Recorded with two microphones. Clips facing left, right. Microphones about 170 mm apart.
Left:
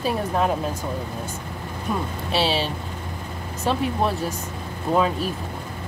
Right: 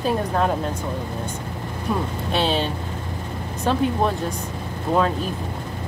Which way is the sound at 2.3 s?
5° left (ahead or behind).